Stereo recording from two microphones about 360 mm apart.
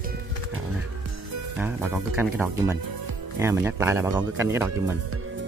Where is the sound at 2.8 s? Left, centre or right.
Right.